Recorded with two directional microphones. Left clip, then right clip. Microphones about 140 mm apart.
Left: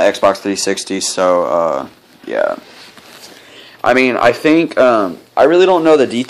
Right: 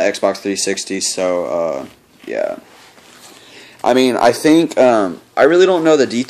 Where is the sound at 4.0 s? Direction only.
25° right (ahead or behind).